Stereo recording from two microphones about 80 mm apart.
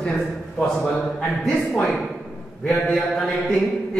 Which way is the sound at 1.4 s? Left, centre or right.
Centre.